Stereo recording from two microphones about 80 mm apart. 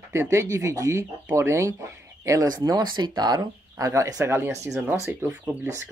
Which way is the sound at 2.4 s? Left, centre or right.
Right.